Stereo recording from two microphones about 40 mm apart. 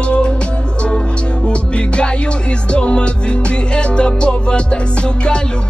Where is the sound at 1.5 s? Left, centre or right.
Left.